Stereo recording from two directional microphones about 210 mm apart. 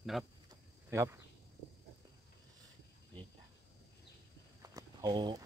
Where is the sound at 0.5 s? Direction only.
15° right (ahead or behind).